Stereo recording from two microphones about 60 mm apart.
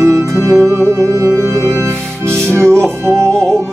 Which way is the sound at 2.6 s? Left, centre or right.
Centre.